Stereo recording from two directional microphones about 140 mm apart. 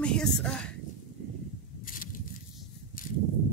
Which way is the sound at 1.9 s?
80° left.